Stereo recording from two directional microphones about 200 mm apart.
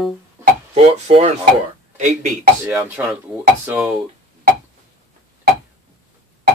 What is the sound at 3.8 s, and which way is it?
Speech, centre (ahead or behind).